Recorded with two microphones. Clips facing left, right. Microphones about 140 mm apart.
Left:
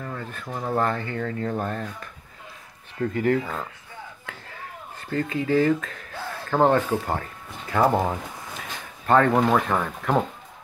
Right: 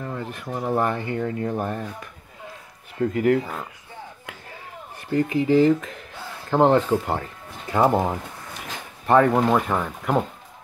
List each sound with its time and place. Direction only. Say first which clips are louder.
0.0 s speech: right 3 dB; 15° right (ahead or behind)
3.1 s speech: right 2 dB; 10° right (ahead or behind)
4.9 s speech: right 5 dB; 15° right (ahead or behind)